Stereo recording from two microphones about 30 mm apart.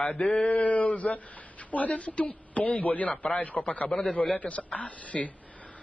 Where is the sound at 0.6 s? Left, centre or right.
Left.